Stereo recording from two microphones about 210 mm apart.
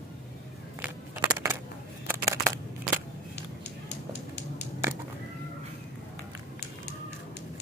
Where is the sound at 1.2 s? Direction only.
15° right (ahead or behind).